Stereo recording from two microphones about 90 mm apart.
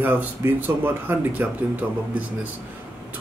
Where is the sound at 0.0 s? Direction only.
20° right (ahead or behind).